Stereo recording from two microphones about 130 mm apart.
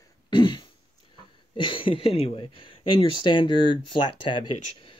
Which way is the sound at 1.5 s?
40° left (ahead or behind).